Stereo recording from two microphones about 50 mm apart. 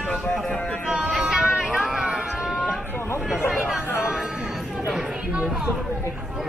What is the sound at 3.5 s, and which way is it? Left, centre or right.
Chatter, centre.